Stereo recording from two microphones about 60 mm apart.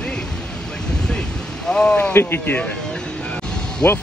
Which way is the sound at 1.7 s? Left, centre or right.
Centre.